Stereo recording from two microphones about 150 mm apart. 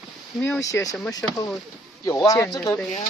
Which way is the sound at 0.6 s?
20° left (ahead or behind).